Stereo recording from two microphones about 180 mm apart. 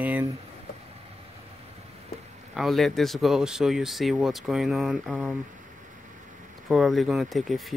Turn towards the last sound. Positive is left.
turn(degrees=0)  # may be behind; listen again after turning